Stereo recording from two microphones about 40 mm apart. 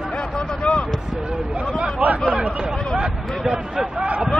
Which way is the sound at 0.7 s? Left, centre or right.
Left.